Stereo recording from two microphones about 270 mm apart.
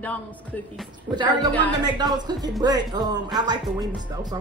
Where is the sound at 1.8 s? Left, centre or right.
Centre.